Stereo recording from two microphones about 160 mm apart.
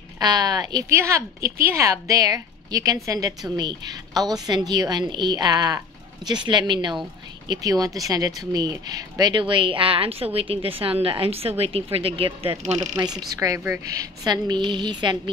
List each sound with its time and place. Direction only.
0.2 s a woman's voice: 25° right (ahead or behind)
13.3 s a woman's voice: 20° right (ahead or behind)